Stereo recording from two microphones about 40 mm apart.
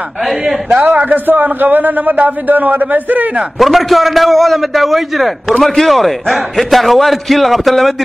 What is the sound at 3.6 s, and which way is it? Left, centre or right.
A man's voice, centre.